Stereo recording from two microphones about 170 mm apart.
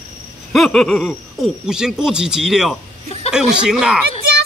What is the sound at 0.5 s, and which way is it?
A man's voice, centre (ahead or behind).